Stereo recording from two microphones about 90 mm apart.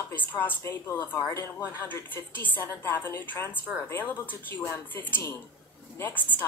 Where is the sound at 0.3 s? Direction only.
20° left (ahead or behind).